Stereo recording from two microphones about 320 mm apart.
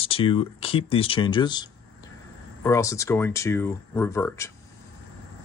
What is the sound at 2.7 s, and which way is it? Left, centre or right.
Speech, centre.